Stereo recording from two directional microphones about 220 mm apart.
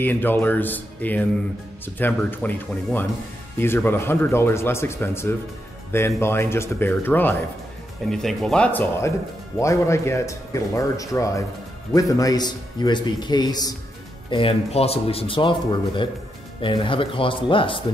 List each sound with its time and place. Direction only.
0.0 s a man's voice: 10° left (ahead or behind)